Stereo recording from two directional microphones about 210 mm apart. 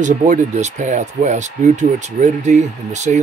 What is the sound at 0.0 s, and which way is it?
Speech, 35° right (ahead or behind).